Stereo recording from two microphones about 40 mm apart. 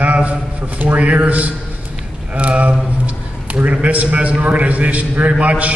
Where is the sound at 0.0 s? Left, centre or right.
Right.